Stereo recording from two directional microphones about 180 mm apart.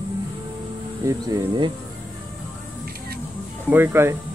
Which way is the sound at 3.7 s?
10° right (ahead or behind).